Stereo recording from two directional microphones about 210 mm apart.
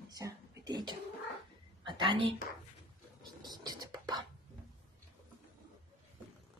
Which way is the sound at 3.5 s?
20° right (ahead or behind).